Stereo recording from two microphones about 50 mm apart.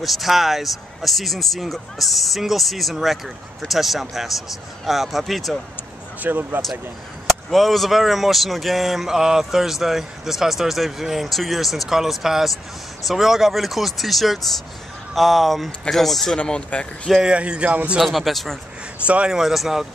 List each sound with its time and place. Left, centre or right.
0.0 s speech: centre
6.2 s speech: right
7.5 s speech: centre
16.3 s speech: left
17.2 s speech: right
18.0 s speech: centre
19.0 s speech: right
19.3 s speech: centre